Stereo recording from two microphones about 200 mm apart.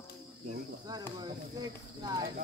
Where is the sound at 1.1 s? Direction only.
20° right (ahead or behind).